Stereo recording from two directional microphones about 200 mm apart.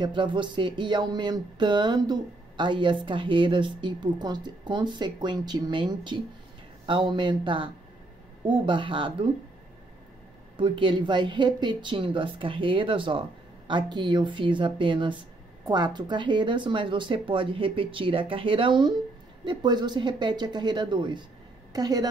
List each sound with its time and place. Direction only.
0.0 s speech: 25° right (ahead or behind)
10.6 s speech: 25° right (ahead or behind)